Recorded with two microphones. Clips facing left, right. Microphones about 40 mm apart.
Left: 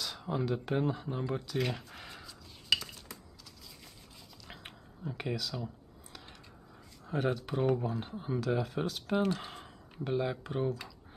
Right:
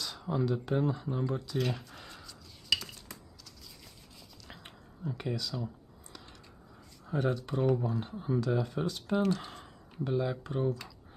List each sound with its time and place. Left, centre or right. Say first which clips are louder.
0.0 s a sound: left 1 dB; centre
0.3 s speech: right 2 dB; centre
2.0 s a sound: left 1 dB; centre
4.5 s whispering: left 2 dB; centre
5.3 s speech: even; centre
7.1 s speech: right 1 dB; centre
10.0 s speech: right 1 dB; left